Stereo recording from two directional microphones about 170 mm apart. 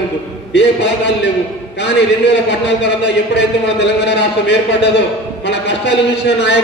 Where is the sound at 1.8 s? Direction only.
90° left.